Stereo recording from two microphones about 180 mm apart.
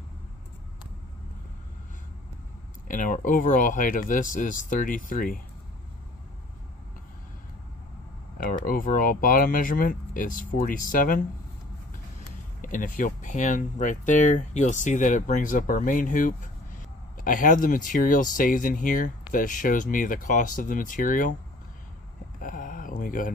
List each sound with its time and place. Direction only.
2.9 s speech: 45° left (ahead or behind)
8.6 s speech: 50° left (ahead or behind)
12.6 s speech: 45° left (ahead or behind)
22.4 s a sound: 50° left (ahead or behind)